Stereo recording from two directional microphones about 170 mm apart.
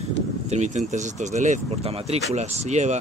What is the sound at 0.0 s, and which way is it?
Speech, 40° right (ahead or behind).